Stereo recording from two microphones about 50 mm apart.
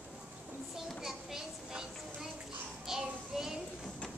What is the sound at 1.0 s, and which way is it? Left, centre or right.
Children playing, centre.